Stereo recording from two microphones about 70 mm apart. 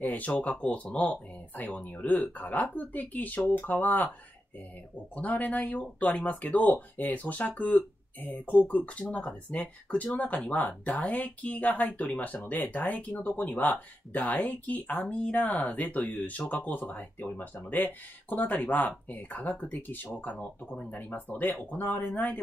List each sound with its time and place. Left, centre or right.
0.0 s speech: left
5.1 s speech: left